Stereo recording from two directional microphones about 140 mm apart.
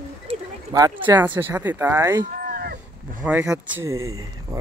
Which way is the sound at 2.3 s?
90° right.